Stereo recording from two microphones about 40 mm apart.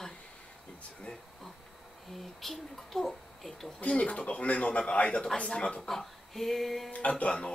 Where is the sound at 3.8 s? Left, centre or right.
Left.